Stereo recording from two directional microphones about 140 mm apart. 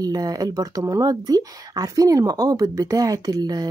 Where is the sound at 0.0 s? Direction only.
25° right (ahead or behind).